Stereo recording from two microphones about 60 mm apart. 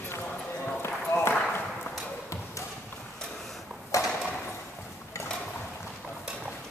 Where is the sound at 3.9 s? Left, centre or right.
Left.